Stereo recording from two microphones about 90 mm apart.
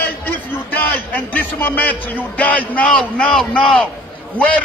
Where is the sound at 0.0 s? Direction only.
20° left (ahead or behind).